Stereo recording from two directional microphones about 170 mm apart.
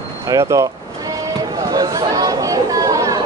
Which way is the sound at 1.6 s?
20° right (ahead or behind).